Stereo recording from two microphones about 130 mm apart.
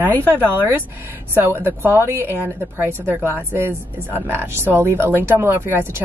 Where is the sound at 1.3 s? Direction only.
20° right (ahead or behind).